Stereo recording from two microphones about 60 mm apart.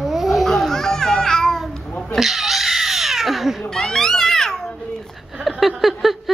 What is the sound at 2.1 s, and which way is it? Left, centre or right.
Cat, centre.